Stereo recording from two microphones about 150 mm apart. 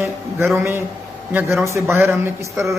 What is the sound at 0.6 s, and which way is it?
A man's voice, 15° right (ahead or behind).